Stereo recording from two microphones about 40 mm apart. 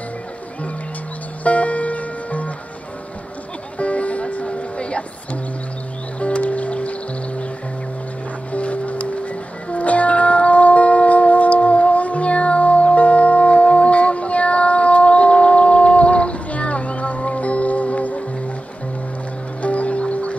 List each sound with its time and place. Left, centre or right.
1.4 s music: left
3.7 s music: left
8.5 s music: left
19.6 s music: left